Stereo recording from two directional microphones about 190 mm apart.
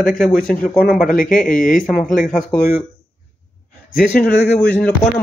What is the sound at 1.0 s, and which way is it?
Speech, 45° left (ahead or behind).